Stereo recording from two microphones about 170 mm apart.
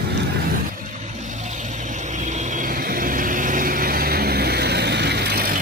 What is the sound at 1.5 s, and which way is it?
Vehicle, 45° right (ahead or behind).